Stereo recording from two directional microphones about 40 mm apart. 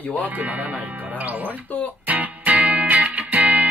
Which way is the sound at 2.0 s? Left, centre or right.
Right.